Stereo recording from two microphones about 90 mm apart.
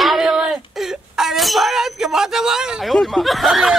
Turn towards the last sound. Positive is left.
turn(degrees=0)  # may be behind; listen again after turning